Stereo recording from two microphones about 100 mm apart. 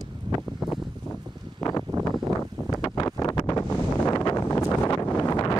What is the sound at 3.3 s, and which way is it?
Wind noise, 45° left (ahead or behind).